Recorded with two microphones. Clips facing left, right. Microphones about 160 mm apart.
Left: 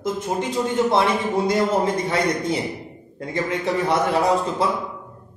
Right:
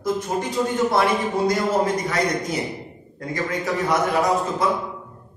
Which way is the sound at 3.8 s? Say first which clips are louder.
Even; 30° left (ahead or behind).